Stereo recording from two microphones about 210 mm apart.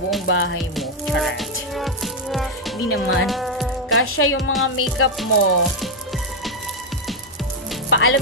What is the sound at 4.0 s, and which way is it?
Speech, 85° left.